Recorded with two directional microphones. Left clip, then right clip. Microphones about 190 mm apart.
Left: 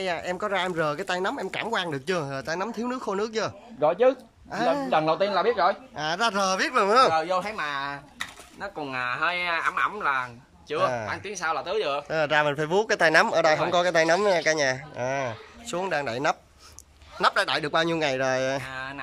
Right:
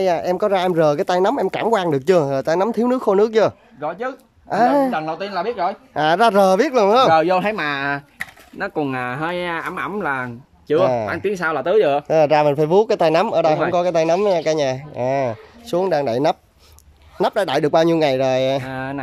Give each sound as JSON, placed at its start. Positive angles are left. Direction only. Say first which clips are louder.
{"t": 0.0, "sound": "speech", "louder": "right 11 dB", "side_deg": -30}
{"t": 3.8, "sound": "speech", "louder": "left 4 dB", "side_deg": 5}
{"t": 4.5, "sound": "speech", "louder": "right 10 dB", "side_deg": -40}
{"t": 4.9, "sound": "speech", "louder": "left 1 dB", "side_deg": 0}
{"t": 5.9, "sound": "speech", "louder": "right 11 dB", "side_deg": -40}
{"t": 7.1, "sound": "speech", "louder": "right 9 dB", "side_deg": -55}
{"t": 12.1, "sound": "speech", "louder": "right 6 dB", "side_deg": -30}
{"t": 18.7, "sound": "speech", "louder": "right 7 dB", "side_deg": -45}